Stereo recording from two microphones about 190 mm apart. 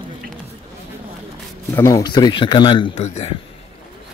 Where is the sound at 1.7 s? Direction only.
15° left (ahead or behind).